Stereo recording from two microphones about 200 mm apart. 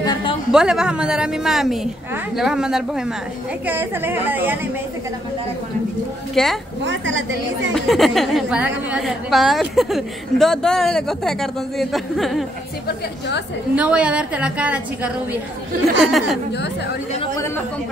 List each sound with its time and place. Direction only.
0.0 s a sound: 20° left (ahead or behind)
0.5 s a woman's voice: 5° right (ahead or behind)
6.3 s a woman's voice: centre (ahead or behind)
6.8 s a woman's voice: 70° right (ahead or behind)
7.7 s a woman's voice: centre (ahead or behind)
13.7 s a woman's voice: 5° right (ahead or behind)
16.0 s a woman's voice: centre (ahead or behind)